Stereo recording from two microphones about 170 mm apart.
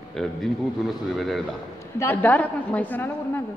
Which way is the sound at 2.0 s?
10° left (ahead or behind).